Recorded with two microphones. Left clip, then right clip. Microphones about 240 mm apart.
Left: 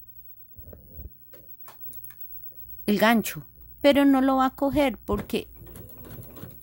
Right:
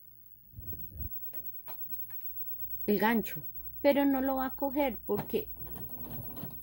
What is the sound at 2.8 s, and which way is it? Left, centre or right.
Speech, left.